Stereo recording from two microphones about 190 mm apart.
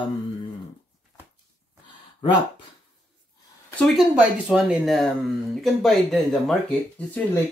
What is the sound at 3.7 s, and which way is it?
Speech, centre (ahead or behind).